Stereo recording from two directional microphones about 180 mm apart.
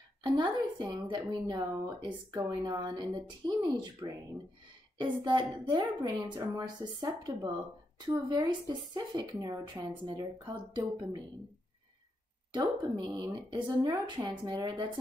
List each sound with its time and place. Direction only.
0.2 s speech: 25° right (ahead or behind)
12.9 s speech: 20° right (ahead or behind)